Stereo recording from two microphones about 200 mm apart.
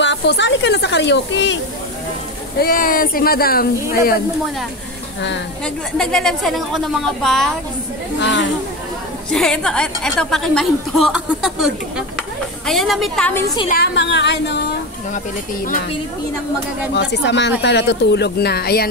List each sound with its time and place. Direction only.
0.0 s speech: 60° left (ahead or behind)
2.6 s speech: 45° left (ahead or behind)
5.9 s a woman's voice: centre (ahead or behind)
8.2 s speech: 60° left (ahead or behind)
9.3 s a woman's voice: 5° left (ahead or behind)
13.7 s speech: 55° left (ahead or behind)
16.9 s speech: 60° left (ahead or behind)